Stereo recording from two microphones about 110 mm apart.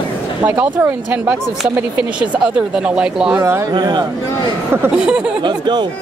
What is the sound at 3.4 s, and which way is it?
Speech, 25° right (ahead or behind).